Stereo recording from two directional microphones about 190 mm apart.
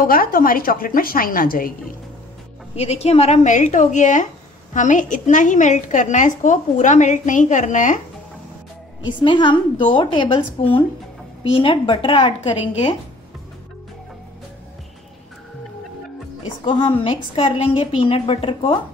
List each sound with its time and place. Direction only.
0.0 s a woman's voice: 50° left (ahead or behind)
2.7 s a woman's voice: 35° left (ahead or behind)
9.0 s a woman's voice: 25° left (ahead or behind)
16.6 s a woman's voice: 25° left (ahead or behind)